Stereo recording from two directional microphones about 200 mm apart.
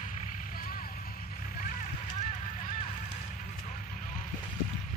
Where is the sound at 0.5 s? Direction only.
45° left (ahead or behind).